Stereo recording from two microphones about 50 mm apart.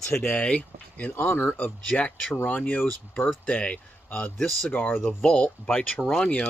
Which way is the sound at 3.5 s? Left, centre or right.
Left.